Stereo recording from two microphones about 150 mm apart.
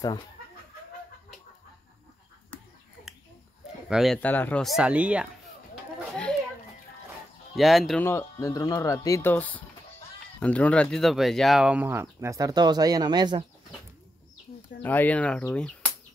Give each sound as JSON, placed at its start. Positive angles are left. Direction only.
{"t": 3.9, "sound": "speech", "side_deg": 0}
{"t": 4.2, "sound": "speech", "side_deg": 10}
{"t": 4.6, "sound": "speech", "side_deg": -5}
{"t": 7.5, "sound": "speech", "side_deg": 0}
{"t": 8.0, "sound": "speech", "side_deg": 20}
{"t": 14.8, "sound": "speech", "side_deg": 10}